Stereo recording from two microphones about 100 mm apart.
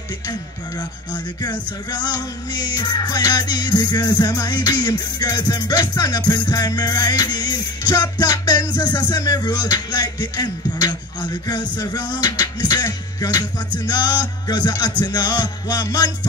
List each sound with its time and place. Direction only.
0.3 s music: 45° left (ahead or behind)